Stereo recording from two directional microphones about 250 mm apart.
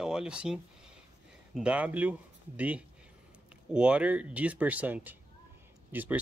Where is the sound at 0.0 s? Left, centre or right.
Centre.